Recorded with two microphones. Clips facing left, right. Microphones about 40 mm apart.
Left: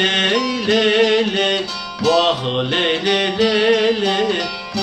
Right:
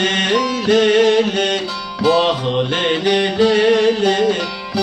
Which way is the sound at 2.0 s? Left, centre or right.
Centre.